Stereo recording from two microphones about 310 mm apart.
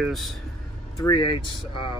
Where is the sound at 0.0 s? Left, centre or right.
Centre.